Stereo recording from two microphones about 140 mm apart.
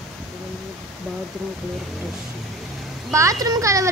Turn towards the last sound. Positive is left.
turn(degrees=-25)  # may be behind; listen again after turning